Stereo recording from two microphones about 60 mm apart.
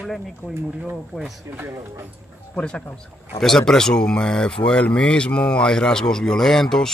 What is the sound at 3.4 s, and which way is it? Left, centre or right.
Speech, centre.